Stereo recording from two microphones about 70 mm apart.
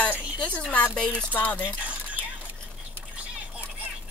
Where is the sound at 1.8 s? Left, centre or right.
Centre.